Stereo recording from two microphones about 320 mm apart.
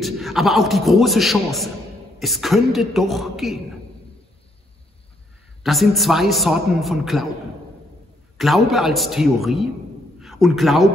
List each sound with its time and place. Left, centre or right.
0.0 s a man's voice: centre
5.6 s a man's voice: centre
8.4 s a man's voice: centre